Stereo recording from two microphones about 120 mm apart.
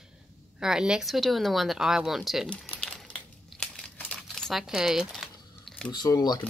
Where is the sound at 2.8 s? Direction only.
10° left (ahead or behind).